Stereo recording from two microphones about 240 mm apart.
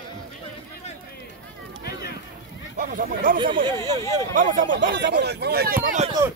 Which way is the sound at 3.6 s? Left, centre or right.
Centre.